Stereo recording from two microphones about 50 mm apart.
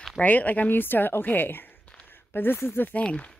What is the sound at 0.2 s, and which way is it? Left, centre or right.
Speech, left.